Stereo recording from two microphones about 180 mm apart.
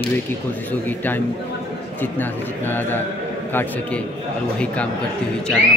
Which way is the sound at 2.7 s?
10° left (ahead or behind).